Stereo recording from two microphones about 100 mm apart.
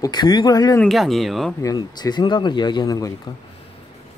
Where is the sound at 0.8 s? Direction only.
Centre (ahead or behind).